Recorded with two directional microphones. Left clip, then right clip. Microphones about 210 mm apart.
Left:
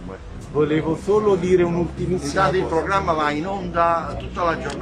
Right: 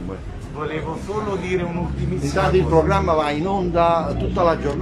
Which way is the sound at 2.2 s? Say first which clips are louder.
Right 1 dB; 10° right (ahead or behind).